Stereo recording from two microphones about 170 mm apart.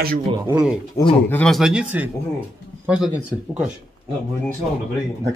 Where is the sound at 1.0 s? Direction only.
20° left (ahead or behind).